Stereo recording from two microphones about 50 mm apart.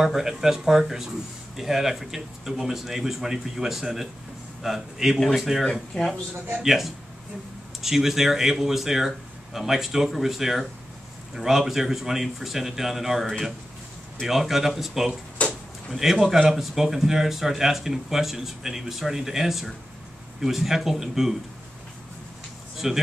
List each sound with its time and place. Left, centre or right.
0.0 s speech: centre
5.7 s speech: centre
6.6 s speech: centre
15.4 s a sound: left
15.9 s speech: centre
22.8 s speech: centre